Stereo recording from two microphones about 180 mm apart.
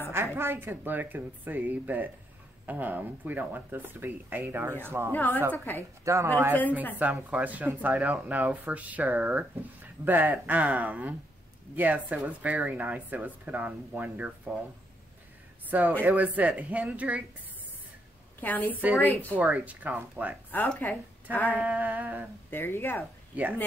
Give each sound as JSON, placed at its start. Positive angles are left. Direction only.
{"t": 0.1, "sound": "speech", "side_deg": -15}
{"t": 5.1, "sound": "speech", "side_deg": 10}
{"t": 6.0, "sound": "speech", "side_deg": -15}
{"t": 16.0, "sound": "speech", "side_deg": -10}
{"t": 18.4, "sound": "speech", "side_deg": 10}
{"t": 18.7, "sound": "speech", "side_deg": -10}
{"t": 20.5, "sound": "a woman's voice", "side_deg": 5}
{"t": 21.5, "sound": "speech", "side_deg": -10}
{"t": 22.5, "sound": "speech", "side_deg": 10}
{"t": 23.3, "sound": "speech", "side_deg": -10}